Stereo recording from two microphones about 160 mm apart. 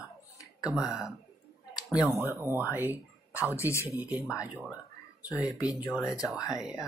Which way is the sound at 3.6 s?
15° left (ahead or behind).